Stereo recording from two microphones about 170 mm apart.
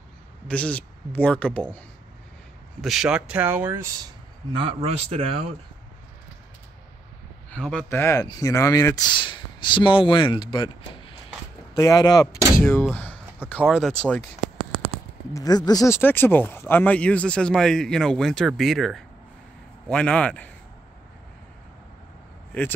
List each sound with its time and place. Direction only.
0.5 s speech: 10° left (ahead or behind)
2.8 s speech: 5° right (ahead or behind)
4.5 s speech: 30° right (ahead or behind)
7.5 s speech: 5° left (ahead or behind); by 12.3 s 20° left (ahead or behind)
12.9 s a sound: 10° left (ahead or behind)
13.7 s speech: centre (ahead or behind)
14.4 s a sound: 30° right (ahead or behind)
15.3 s speech: 20° left (ahead or behind); by 20.4 s 5° left (ahead or behind)
22.5 s speech: 10° left (ahead or behind)